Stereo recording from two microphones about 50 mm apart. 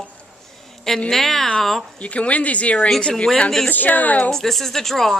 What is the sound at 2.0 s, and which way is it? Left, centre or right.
Speech, left.